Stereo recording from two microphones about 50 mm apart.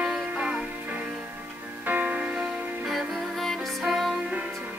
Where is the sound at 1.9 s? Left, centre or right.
Right.